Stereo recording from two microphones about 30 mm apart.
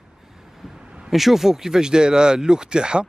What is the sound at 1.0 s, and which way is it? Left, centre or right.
Speech, centre.